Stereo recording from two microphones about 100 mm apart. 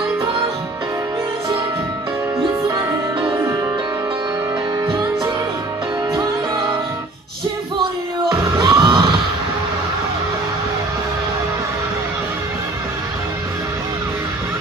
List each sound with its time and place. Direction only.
8.6 s music: 55° right (ahead or behind)